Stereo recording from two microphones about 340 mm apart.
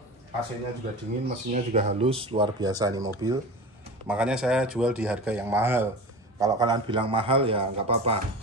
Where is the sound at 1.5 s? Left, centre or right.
Centre.